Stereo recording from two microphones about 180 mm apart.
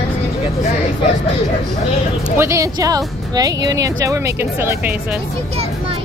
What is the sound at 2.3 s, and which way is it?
Speech, 15° right (ahead or behind).